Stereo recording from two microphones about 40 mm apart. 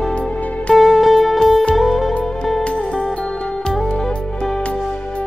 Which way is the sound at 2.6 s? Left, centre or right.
Left.